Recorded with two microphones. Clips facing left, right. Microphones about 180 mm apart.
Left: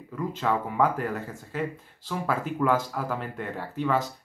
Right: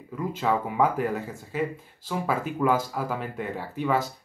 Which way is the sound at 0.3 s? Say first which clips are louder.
Right 2 dB; 10° right (ahead or behind).